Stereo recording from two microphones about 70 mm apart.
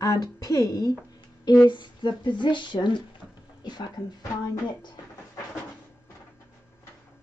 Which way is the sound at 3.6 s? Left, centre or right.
Left.